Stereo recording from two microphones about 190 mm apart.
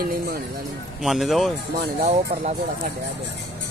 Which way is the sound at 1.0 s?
Centre (ahead or behind).